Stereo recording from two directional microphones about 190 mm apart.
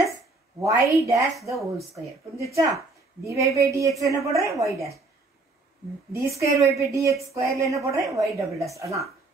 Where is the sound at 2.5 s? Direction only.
15° right (ahead or behind).